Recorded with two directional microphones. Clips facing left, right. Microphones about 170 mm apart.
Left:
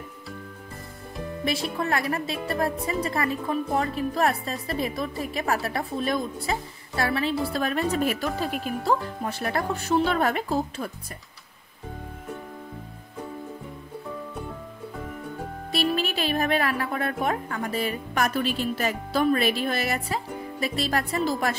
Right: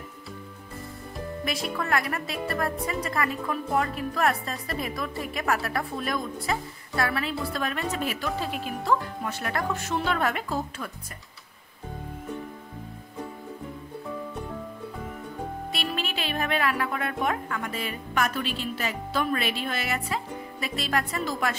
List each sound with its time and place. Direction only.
1.4 s a woman's voice: 30° left (ahead or behind); by 8.5 s 45° left (ahead or behind)
8.8 s a woman's voice: 35° left (ahead or behind)
15.7 s a woman's voice: 35° left (ahead or behind)